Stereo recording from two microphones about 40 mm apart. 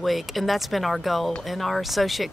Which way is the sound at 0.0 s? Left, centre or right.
Centre.